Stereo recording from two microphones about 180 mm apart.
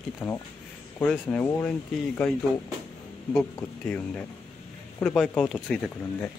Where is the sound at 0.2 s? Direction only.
5° left (ahead or behind).